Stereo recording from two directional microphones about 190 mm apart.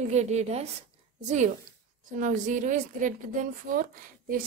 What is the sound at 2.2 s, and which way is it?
A woman's voice, 40° right (ahead or behind).